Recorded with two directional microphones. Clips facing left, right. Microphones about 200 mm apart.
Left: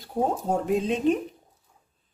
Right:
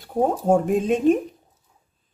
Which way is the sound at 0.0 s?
50° right (ahead or behind).